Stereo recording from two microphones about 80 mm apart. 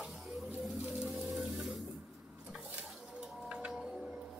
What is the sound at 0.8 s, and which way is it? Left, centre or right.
Music, centre.